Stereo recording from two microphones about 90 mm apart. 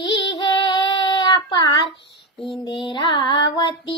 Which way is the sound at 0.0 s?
55° left (ahead or behind).